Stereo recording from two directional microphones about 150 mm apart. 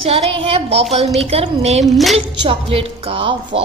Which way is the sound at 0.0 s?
40° right (ahead or behind).